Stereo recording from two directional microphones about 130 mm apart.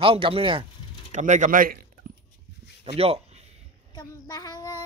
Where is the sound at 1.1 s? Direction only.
70° right (ahead or behind); by 1.8 s 90° right.